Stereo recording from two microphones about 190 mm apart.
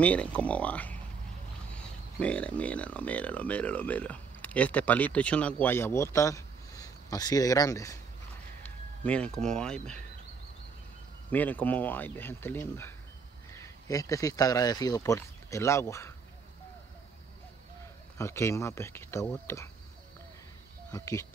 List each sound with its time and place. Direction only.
0.0 s speech: 5° left (ahead or behind)
8.6 s speech: 5° left (ahead or behind)
11.2 s speech: 10° left (ahead or behind)
18.1 s speech: 15° left (ahead or behind)
20.9 s speech: 15° left (ahead or behind)